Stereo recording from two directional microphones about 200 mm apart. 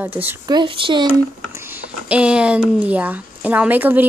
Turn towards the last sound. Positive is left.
turn(degrees=-10)  # may be behind; listen again after turning